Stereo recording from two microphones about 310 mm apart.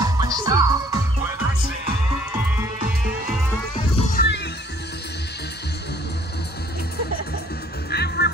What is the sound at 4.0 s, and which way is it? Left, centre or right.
Music, left.